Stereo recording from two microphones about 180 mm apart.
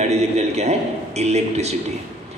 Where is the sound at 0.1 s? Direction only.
35° right (ahead or behind).